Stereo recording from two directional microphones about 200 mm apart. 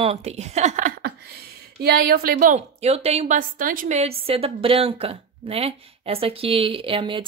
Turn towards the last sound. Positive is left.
turn(degrees=-25)  # may be behind; listen again after turning